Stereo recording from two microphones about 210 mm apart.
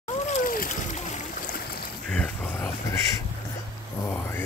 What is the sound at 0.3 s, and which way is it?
Splash, 40° left (ahead or behind).